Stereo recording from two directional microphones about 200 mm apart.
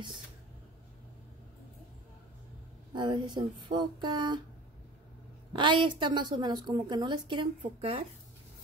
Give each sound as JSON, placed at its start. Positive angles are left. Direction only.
{"t": 2.9, "sound": "a woman's voice", "side_deg": -20}
{"t": 5.5, "sound": "a woman's voice", "side_deg": -25}